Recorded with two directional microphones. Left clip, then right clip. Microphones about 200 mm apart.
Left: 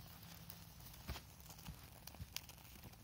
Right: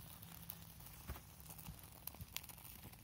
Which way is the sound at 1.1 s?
40° left (ahead or behind).